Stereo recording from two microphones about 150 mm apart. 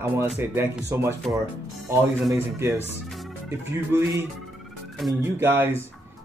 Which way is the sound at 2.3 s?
20° right (ahead or behind).